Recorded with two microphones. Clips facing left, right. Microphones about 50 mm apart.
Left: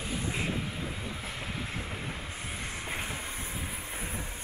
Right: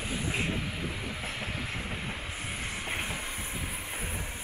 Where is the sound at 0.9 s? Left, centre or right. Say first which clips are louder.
Right 2 dB; centre.